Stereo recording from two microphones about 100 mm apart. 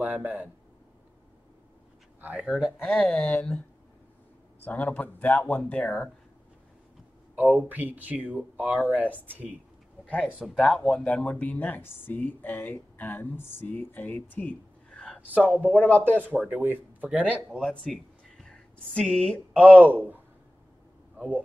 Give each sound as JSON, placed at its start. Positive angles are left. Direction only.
{"t": 0.0, "sound": "a man's voice", "side_deg": -15}
{"t": 2.2, "sound": "speech", "side_deg": -10}
{"t": 3.2, "sound": "speech", "side_deg": 15}
{"t": 4.6, "sound": "speech", "side_deg": 15}
{"t": 7.5, "sound": "speech", "side_deg": -15}
{"t": 10.2, "sound": "speech", "side_deg": 0}
{"t": 15.1, "sound": "speech", "side_deg": -15}
{"t": 15.7, "sound": "speech", "side_deg": 15}
{"t": 16.0, "sound": "speech", "side_deg": -20}
{"t": 17.5, "sound": "speech", "side_deg": 5}
{"t": 19.5, "sound": "speech", "side_deg": -15}